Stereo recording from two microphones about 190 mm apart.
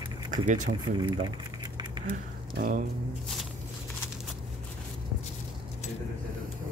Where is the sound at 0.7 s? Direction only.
25° right (ahead or behind).